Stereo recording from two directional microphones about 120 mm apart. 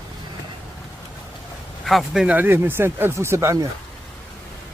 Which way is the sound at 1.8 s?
Centre (ahead or behind).